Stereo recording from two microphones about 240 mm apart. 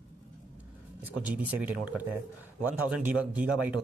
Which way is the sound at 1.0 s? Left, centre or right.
Centre.